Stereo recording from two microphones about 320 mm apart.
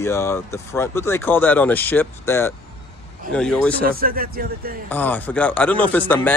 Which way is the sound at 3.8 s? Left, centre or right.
Right.